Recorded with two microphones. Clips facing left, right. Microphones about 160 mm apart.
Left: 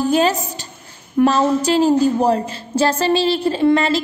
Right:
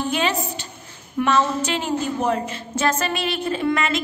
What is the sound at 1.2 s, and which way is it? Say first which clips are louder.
A woman's voice: left 5 dB; 35° left (ahead or behind).